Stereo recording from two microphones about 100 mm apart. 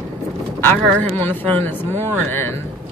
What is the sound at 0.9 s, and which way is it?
Speech, 15° left (ahead or behind).